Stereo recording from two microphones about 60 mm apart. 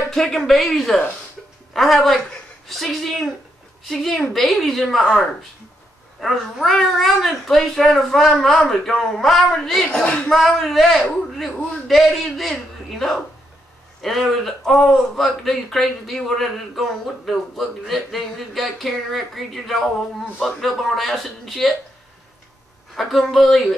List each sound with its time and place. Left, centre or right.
0.1 s a woman's voice: centre
6.2 s speech: centre
10.3 s speech: centre
22.9 s speech: centre